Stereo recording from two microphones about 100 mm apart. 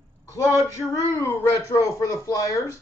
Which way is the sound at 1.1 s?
30° left (ahead or behind).